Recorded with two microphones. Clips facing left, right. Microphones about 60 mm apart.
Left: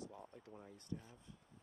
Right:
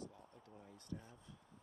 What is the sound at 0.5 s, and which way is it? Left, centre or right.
Speech, left.